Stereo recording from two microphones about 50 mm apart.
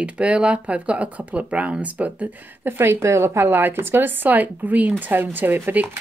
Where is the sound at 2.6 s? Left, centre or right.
Right.